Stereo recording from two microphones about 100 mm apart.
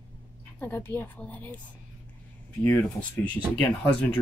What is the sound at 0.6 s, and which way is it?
Speech, 20° left (ahead or behind).